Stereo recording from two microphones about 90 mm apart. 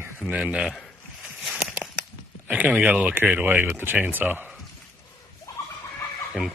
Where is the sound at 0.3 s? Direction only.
10° right (ahead or behind).